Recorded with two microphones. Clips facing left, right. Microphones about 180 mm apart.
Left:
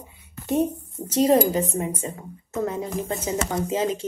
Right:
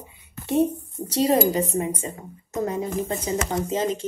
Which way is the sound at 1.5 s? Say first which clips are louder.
Right 1 dB; 10° right (ahead or behind).